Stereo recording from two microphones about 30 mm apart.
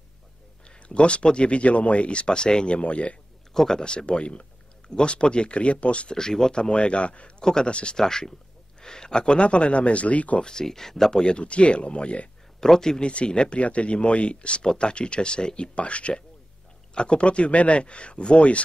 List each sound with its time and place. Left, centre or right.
0.7 s speech: left
2.8 s a man's voice: left
3.5 s speech: centre
3.8 s speech: left
6.1 s speech: left
6.5 s speech: left
8.0 s speech: centre; by 10.4 s left
10.4 s speech: centre
11.2 s speech: left
12.5 s speech: centre
13.0 s speech: left